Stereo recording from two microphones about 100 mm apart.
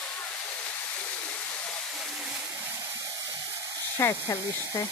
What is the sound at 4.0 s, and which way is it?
Speech, 30° left (ahead or behind).